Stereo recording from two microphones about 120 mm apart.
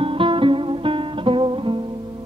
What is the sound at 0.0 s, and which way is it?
Music, 45° right (ahead or behind).